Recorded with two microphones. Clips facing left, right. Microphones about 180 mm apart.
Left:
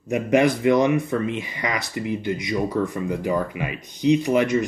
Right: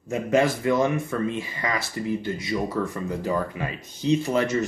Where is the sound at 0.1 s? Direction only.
15° left (ahead or behind).